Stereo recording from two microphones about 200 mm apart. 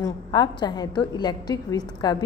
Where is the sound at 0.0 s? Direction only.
20° left (ahead or behind).